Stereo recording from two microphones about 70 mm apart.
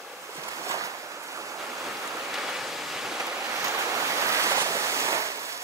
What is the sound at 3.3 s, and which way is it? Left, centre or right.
Waves, right.